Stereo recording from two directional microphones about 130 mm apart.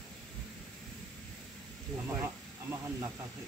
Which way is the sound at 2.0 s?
20° right (ahead or behind).